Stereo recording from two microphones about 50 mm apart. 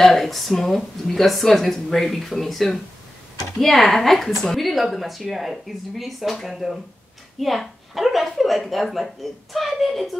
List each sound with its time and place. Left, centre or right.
0.0 s speech: centre